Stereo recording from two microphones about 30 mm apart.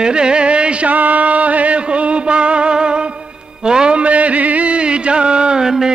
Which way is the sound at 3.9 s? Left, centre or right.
Right.